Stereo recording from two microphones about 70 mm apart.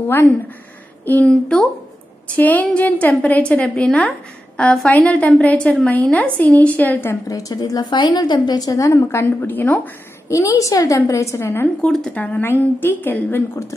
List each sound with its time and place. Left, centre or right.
1.2 s speech: centre
2.3 s a woman's voice: left
7.2 s a woman's voice: left
9.4 s a woman's voice: left
10.2 s a woman's voice: left
11.8 s speech: centre
12.4 s a woman's voice: left